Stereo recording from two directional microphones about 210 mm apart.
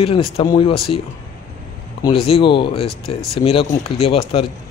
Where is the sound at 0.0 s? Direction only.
25° left (ahead or behind).